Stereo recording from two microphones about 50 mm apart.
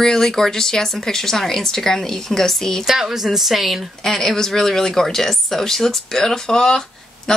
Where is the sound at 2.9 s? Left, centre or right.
Centre.